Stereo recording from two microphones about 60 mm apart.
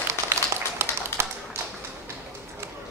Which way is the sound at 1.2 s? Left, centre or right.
Right.